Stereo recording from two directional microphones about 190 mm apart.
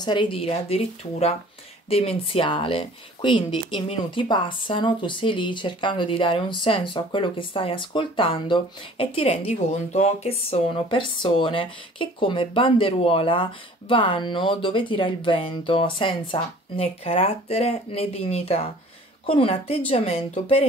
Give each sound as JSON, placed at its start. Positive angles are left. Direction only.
{"t": 0.0, "sound": "speech", "side_deg": 25}